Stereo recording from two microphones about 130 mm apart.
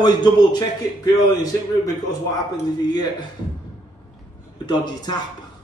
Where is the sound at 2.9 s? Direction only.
35° left (ahead or behind).